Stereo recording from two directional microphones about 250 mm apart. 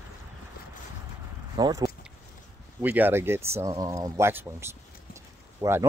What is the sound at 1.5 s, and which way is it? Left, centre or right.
Speech, centre.